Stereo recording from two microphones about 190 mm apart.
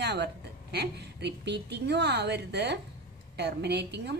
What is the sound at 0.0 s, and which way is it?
A woman's voice, 60° right (ahead or behind).